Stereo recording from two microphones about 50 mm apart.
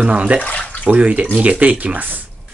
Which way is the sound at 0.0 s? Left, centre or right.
Right.